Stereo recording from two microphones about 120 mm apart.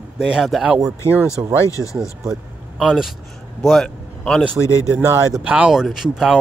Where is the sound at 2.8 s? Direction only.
5° right (ahead or behind).